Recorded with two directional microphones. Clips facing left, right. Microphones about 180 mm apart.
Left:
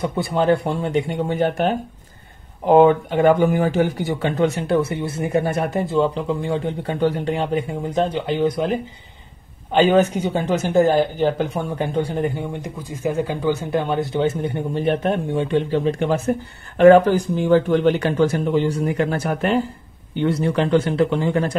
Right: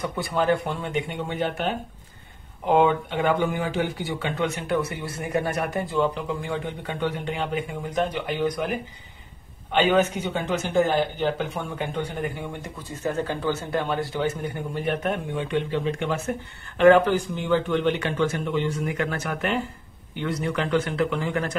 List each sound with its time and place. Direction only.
0.0 s speech: 25° left (ahead or behind)
9.7 s speech: 35° left (ahead or behind)
12.6 s speech: 15° left (ahead or behind); by 21.5 s 30° left (ahead or behind)